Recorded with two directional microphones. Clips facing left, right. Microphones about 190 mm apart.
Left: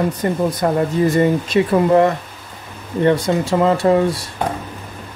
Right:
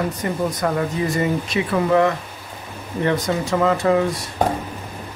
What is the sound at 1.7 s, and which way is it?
Speech, 35° left (ahead or behind).